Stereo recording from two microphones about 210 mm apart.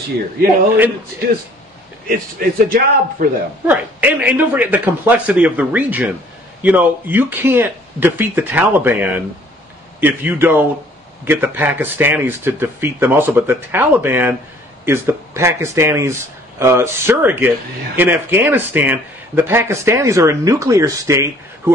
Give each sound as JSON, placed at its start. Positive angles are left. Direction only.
{"t": 2.0, "sound": "a man's voice", "side_deg": -45}
{"t": 3.6, "sound": "speech", "side_deg": -10}